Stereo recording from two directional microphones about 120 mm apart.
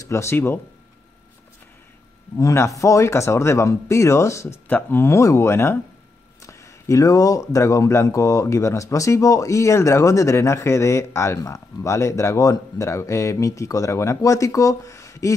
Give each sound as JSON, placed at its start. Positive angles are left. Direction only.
{"t": 0.0, "sound": "speech", "side_deg": 25}
{"t": 2.3, "sound": "speech", "side_deg": 25}